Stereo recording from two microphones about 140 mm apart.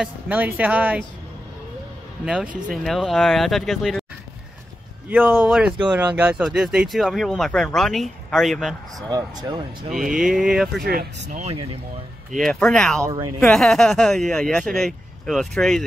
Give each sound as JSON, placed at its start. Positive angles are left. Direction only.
{"t": 0.0, "sound": "speech", "side_deg": -10}
{"t": 2.2, "sound": "speech", "side_deg": -5}
{"t": 5.0, "sound": "speech", "side_deg": -10}
{"t": 9.1, "sound": "speech", "side_deg": -30}
{"t": 10.1, "sound": "speech", "side_deg": -5}
{"t": 10.8, "sound": "speech", "side_deg": -90}
{"t": 12.4, "sound": "speech", "side_deg": 0}